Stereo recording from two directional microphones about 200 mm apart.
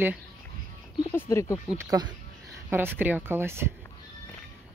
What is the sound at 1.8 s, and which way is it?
Speech, 20° right (ahead or behind).